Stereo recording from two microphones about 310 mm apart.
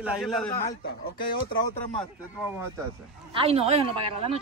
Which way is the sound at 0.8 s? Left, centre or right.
Left.